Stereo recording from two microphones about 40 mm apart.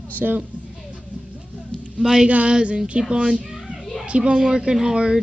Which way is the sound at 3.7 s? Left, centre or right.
Centre.